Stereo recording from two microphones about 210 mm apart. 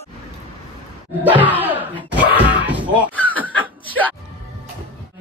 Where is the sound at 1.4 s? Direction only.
10° right (ahead or behind).